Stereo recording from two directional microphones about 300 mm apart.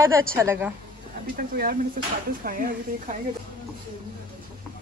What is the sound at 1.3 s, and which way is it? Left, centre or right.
A woman's voice, right.